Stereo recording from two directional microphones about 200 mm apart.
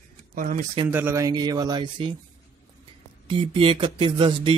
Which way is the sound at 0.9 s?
10° right (ahead or behind).